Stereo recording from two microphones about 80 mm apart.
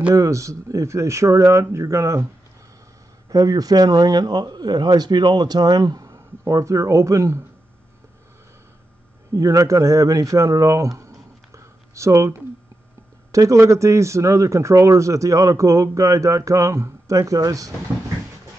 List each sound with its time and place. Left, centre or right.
0.1 s a man's voice: right
3.3 s speech: right
9.3 s a man's voice: right